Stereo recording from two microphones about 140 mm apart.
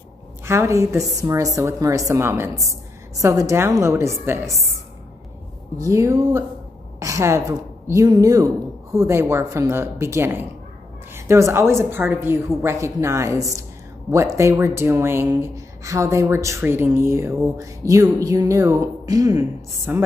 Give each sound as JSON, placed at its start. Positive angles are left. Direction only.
{"t": 0.5, "sound": "speech", "side_deg": -20}
{"t": 5.8, "sound": "a woman's voice", "side_deg": -20}